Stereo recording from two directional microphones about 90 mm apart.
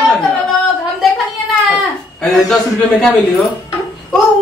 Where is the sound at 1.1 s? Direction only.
5° left (ahead or behind).